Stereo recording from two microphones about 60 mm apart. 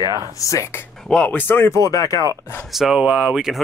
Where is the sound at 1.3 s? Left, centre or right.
Left.